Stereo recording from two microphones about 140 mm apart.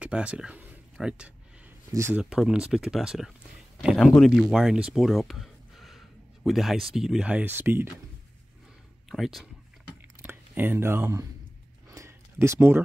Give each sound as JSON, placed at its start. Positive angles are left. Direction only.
{"t": 0.0, "sound": "speech", "side_deg": -10}
{"t": 2.0, "sound": "speech", "side_deg": -15}
{"t": 2.2, "sound": "speech", "side_deg": -5}
{"t": 9.1, "sound": "speech", "side_deg": 0}
{"t": 10.2, "sound": "speech", "side_deg": -15}
{"t": 11.9, "sound": "a sound", "side_deg": -20}